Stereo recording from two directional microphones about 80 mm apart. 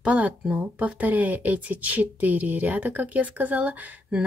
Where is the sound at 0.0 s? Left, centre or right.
Centre.